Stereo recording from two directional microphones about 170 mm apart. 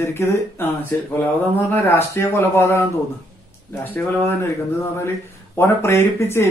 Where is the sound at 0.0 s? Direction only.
15° left (ahead or behind).